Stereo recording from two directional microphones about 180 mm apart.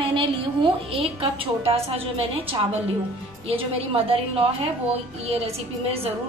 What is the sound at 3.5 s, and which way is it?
Speech, 30° right (ahead or behind).